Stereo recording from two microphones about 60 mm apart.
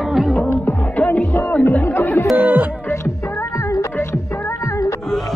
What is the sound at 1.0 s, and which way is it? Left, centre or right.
Music, left.